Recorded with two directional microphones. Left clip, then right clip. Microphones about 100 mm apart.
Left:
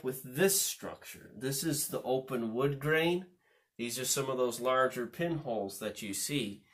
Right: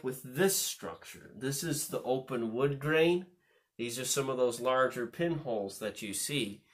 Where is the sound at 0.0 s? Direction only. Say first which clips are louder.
Even; 25° right (ahead or behind).